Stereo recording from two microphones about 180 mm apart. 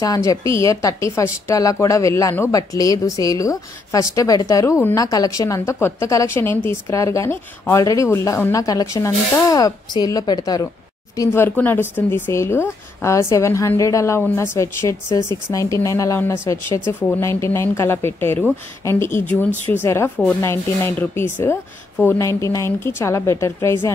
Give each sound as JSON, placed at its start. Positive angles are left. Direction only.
{"t": 0.0, "sound": "a woman's voice", "side_deg": 20}